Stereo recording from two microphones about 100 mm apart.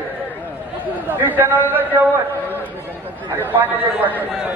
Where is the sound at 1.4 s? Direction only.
20° right (ahead or behind).